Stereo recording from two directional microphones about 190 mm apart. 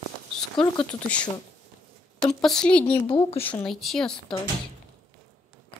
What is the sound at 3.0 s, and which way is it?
Speech, 30° left (ahead or behind).